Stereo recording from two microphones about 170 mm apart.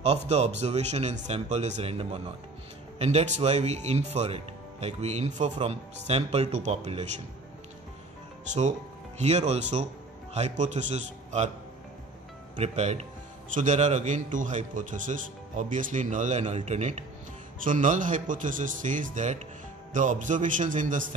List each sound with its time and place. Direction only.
0.0 s speech: 40° right (ahead or behind)
9.5 s speech: 40° right (ahead or behind)
12.5 s speech: 40° right (ahead or behind)